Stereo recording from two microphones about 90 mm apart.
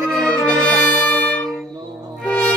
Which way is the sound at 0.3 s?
10° left (ahead or behind).